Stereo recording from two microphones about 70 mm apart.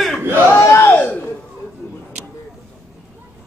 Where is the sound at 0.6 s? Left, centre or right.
Left.